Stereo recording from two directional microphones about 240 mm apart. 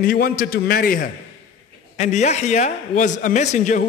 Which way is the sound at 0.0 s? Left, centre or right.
Left.